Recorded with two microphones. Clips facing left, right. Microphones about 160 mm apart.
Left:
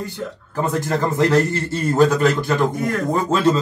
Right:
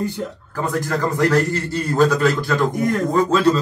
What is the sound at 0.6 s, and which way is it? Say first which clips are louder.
A man's voice: left 1 dB; 25° left (ahead or behind).